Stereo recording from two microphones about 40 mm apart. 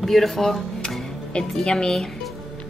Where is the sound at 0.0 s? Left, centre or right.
Centre.